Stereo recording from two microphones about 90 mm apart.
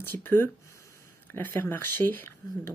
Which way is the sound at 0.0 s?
25° left (ahead or behind).